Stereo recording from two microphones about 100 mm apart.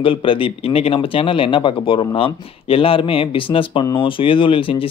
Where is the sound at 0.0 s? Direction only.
60° left (ahead or behind).